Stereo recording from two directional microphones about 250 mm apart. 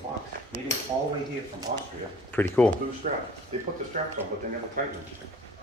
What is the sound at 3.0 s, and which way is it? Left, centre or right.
Speech, right.